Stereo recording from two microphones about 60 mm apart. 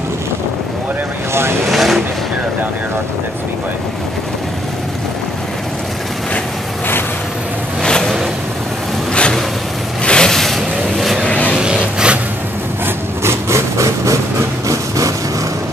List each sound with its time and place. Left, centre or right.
1.7 s vehicle: centre
7.8 s vehicle: centre
9.1 s a sound: centre
10.0 s vehicle: centre
11.1 s vehicle: left
11.5 s a sound: centre
12.8 s wood: right
14.7 s vehicle: right